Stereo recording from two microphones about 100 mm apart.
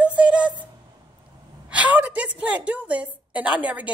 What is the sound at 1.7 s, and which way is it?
A man's voice, 15° right (ahead or behind).